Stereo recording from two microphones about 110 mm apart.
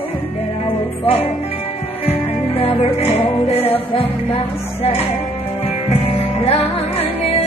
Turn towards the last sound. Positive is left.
turn(degrees=65)  # may be behind; listen again after turning